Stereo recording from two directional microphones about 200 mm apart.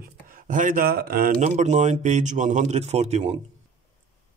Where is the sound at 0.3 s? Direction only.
45° right (ahead or behind).